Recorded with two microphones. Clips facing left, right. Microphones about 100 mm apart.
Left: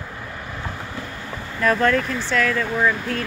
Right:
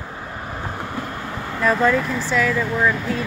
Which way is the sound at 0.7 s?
50° right (ahead or behind).